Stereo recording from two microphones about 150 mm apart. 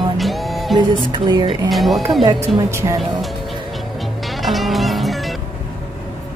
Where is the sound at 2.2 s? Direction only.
25° right (ahead or behind).